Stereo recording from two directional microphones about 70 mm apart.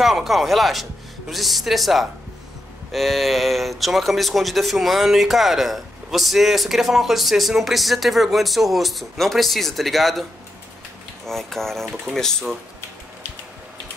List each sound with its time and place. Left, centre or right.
0.0 s speech: centre
11.2 s speech: centre